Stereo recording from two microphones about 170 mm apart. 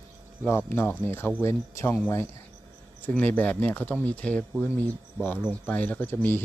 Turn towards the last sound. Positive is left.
turn(degrees=10)  # may be behind; listen again after turning